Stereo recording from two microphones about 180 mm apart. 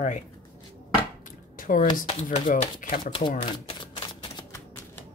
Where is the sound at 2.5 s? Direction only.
50° left (ahead or behind).